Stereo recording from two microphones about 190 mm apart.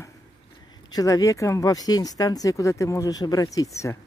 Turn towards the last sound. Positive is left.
turn(degrees=20)  # may be behind; listen again after turning